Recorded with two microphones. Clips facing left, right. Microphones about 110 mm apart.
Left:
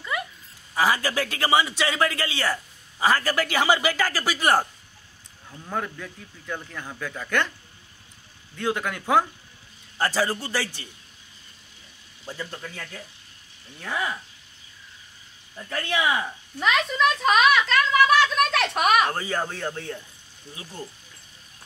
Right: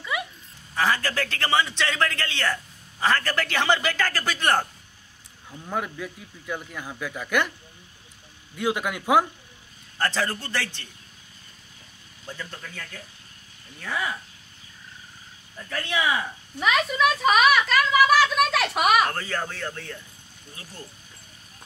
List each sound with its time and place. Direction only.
0.1 s a sound: 5° right (ahead or behind)
0.7 s a man's voice: 10° left (ahead or behind)
5.5 s a man's voice: 5° right (ahead or behind)
8.5 s a man's voice: 15° right (ahead or behind)
9.9 s a man's voice: 10° left (ahead or behind)
12.3 s a man's voice: 10° left (ahead or behind)
15.7 s speech: 5° left (ahead or behind)
16.5 s a sound: 5° right (ahead or behind)
19.0 s a man's voice: 15° left (ahead or behind)